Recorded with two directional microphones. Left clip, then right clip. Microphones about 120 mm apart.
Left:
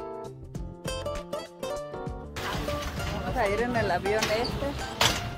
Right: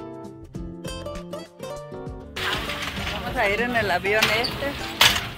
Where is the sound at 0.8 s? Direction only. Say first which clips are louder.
Left 2 dB; centre (ahead or behind).